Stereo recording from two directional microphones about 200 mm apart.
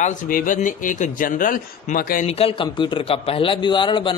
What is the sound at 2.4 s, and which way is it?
A man's voice, 25° left (ahead or behind).